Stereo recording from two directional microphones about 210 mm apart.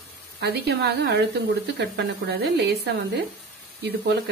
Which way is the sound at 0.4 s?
50° right (ahead or behind).